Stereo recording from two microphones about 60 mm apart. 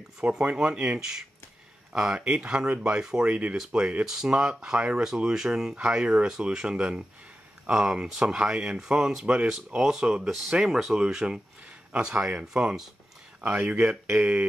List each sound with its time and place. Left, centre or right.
0.5 s speech: centre
9.8 s speech: centre